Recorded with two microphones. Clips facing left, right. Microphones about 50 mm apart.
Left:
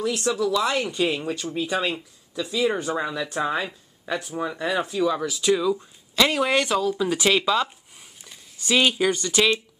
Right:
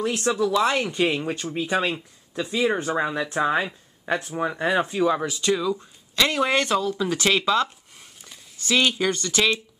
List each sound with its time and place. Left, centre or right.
0.0 s speech: right
2.6 s speech: right
5.4 s speech: centre